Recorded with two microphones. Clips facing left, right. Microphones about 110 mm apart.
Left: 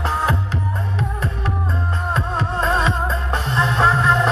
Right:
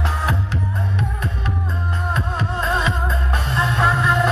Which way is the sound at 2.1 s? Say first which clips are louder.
Left 3 dB; 30° left (ahead or behind).